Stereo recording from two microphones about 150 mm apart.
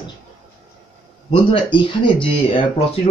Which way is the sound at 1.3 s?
35° left (ahead or behind).